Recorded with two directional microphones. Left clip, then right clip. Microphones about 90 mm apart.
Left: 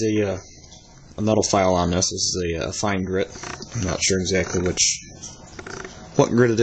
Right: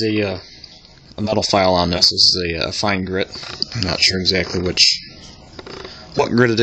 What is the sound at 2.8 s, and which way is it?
Speech, 25° right (ahead or behind).